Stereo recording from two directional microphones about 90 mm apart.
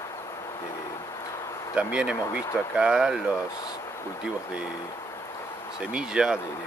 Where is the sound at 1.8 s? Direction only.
15° right (ahead or behind).